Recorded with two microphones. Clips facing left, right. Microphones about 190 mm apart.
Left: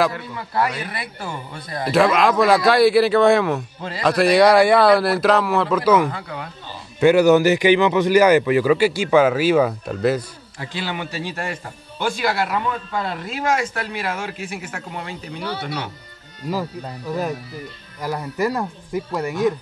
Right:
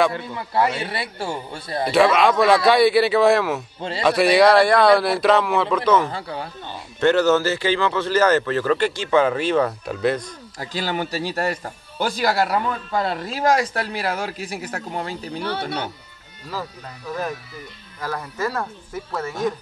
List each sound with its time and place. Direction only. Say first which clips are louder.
0.1 s speech: right 2 dB; 25° right (ahead or behind)
1.9 s speech: even; centre (ahead or behind)
6.0 s speech: even; 30° right (ahead or behind)
7.0 s a man's voice: left 4 dB; 10° left (ahead or behind)
10.6 s speech: right 2 dB; 40° right (ahead or behind)
18.0 s a man's voice: left 4 dB; 15° left (ahead or behind)